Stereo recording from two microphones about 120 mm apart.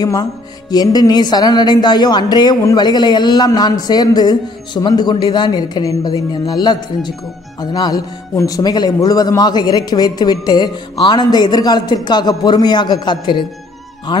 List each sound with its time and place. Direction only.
0.0 s speech: 30° left (ahead or behind)